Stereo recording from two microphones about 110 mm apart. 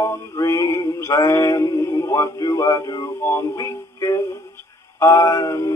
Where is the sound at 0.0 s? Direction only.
25° left (ahead or behind).